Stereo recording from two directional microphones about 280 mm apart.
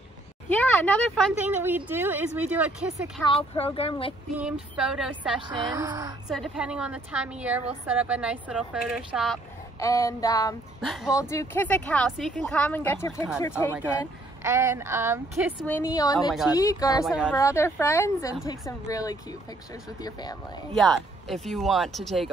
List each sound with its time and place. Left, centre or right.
0.5 s a woman's voice: centre
3.3 s speech: left
4.4 s a woman's voice: centre
5.5 s speech: centre
6.2 s a woman's voice: centre
9.8 s speech: centre
10.8 s a woman's voice: centre
11.1 s a woman's voice: centre
14.4 s speech: centre
15.6 s speech: centre
17.0 s a woman's voice: centre
17.4 s speech: centre
20.7 s a woman's voice: centre